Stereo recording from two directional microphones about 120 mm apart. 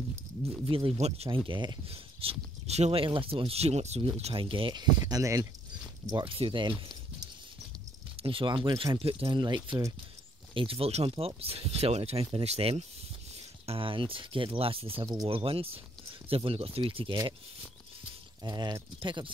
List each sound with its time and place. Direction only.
0.7 s speech: 50° right (ahead or behind)
1.9 s speech: 55° right (ahead or behind); by 6.3 s 35° right (ahead or behind)
6.3 s speech: 45° right (ahead or behind)
8.2 s speech: 45° right (ahead or behind)
13.7 s speech: 50° right (ahead or behind)
18.4 s speech: 35° right (ahead or behind)